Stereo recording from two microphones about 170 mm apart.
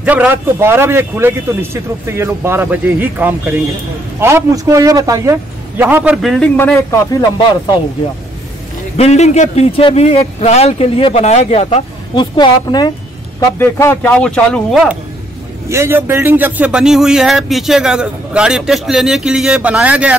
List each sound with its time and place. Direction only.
0.0 s a man's voice: 10° right (ahead or behind)
6.2 s speech: centre (ahead or behind)
6.5 s speech: 10° left (ahead or behind)
7.2 s speech: 25° left (ahead or behind)
8.9 s a man's voice: 40° left (ahead or behind)
12.2 s speech: 25° left (ahead or behind); by 14.8 s 5° left (ahead or behind)
15.7 s speech: 15° right (ahead or behind)